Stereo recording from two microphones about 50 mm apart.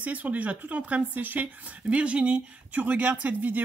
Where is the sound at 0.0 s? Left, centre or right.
Right.